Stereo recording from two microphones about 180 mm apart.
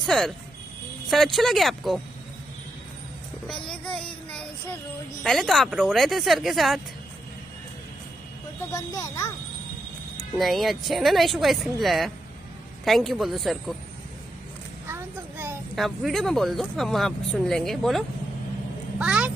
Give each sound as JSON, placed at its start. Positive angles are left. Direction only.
{"t": 0.0, "sound": "speech", "side_deg": 0}
{"t": 3.6, "sound": "speech", "side_deg": 5}
{"t": 8.7, "sound": "speech", "side_deg": 20}
{"t": 10.3, "sound": "speech", "side_deg": 0}
{"t": 14.9, "sound": "a sound", "side_deg": -10}
{"t": 15.7, "sound": "speech", "side_deg": 0}